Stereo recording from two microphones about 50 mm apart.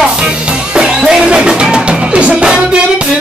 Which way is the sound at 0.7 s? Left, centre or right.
Centre.